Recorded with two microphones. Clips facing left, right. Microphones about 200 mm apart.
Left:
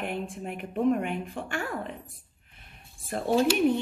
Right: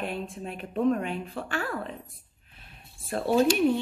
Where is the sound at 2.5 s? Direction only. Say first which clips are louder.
Right 2 dB; 20° left (ahead or behind).